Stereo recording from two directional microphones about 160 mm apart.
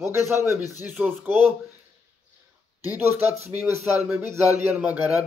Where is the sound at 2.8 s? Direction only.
10° right (ahead or behind).